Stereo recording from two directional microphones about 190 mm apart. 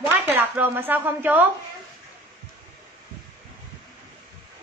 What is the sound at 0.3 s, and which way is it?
Speech, 10° right (ahead or behind).